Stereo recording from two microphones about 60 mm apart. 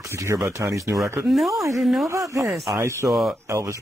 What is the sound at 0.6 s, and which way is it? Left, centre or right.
Speech, right.